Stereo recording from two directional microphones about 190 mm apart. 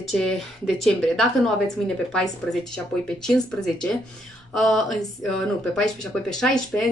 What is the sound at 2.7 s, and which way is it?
A woman's voice, 5° left (ahead or behind).